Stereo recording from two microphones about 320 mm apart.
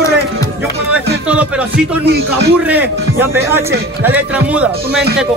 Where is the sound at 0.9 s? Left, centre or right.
Centre.